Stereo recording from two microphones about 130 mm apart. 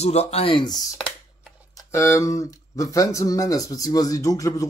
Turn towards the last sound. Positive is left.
turn(degrees=25)  # may be behind; listen again after turning